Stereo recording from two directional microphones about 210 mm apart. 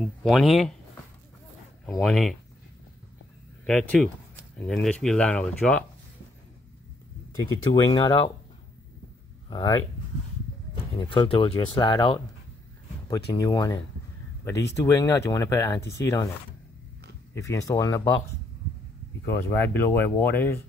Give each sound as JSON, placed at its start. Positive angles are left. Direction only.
{"t": 0.0, "sound": "speech", "side_deg": 0}
{"t": 1.9, "sound": "speech", "side_deg": 5}
{"t": 3.6, "sound": "speech", "side_deg": 5}
{"t": 7.7, "sound": "speech", "side_deg": 20}
{"t": 9.5, "sound": "speech", "side_deg": 20}
{"t": 11.0, "sound": "speech", "side_deg": 20}
{"t": 17.3, "sound": "speech", "side_deg": 15}
{"t": 19.2, "sound": "speech", "side_deg": 10}